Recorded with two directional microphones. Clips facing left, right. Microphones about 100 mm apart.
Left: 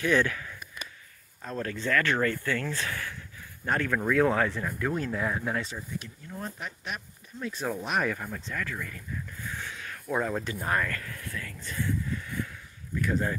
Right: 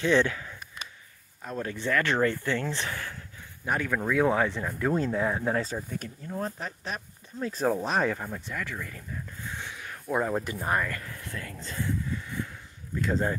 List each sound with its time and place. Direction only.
0.0 s speech: 25° right (ahead or behind)
1.4 s speech: 15° right (ahead or behind)
3.6 s speech: 15° right (ahead or behind)
8.9 s a sound: 25° right (ahead or behind)
10.2 s speech: 15° right (ahead or behind)
12.1 s a sound: 20° right (ahead or behind)
12.9 s speech: 25° right (ahead or behind)